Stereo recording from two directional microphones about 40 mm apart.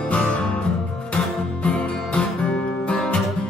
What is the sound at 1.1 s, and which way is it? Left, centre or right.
Guitar, left.